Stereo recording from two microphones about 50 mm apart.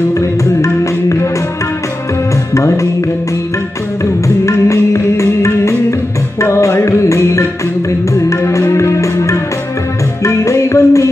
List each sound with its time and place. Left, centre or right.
0.1 s music: left
2.5 s music: left
4.0 s music: left
6.4 s music: left